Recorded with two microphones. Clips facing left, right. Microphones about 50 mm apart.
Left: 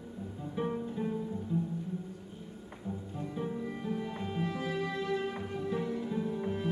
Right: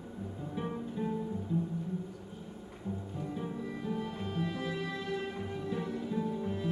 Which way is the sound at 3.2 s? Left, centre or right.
Centre.